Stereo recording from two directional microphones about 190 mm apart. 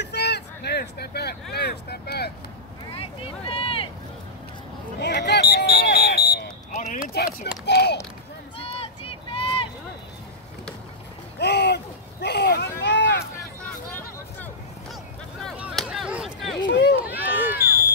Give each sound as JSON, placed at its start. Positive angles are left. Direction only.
{"t": 0.0, "sound": "speech", "side_deg": 60}
{"t": 3.0, "sound": "vehicle", "side_deg": 30}
{"t": 5.0, "sound": "a sound", "side_deg": 60}
{"t": 6.7, "sound": "a sound", "side_deg": 40}
{"t": 7.6, "sound": "a child's voice", "side_deg": 60}
{"t": 8.5, "sound": "run", "side_deg": 30}
{"t": 11.3, "sound": "a sound", "side_deg": 60}
{"t": 13.7, "sound": "vehicle", "side_deg": 10}
{"t": 15.4, "sound": "chop", "side_deg": 0}
{"t": 16.6, "sound": "run", "side_deg": 70}
{"t": 17.1, "sound": "run", "side_deg": -10}